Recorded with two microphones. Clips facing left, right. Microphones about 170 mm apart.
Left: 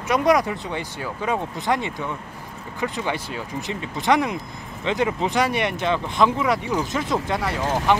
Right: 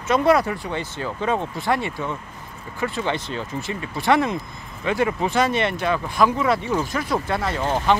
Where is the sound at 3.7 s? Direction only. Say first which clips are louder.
Right 1 dB; 20° left (ahead or behind).